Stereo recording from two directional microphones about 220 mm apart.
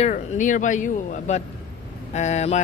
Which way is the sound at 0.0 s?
35° left (ahead or behind).